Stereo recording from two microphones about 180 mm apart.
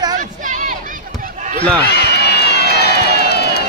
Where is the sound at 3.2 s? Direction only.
65° left (ahead or behind).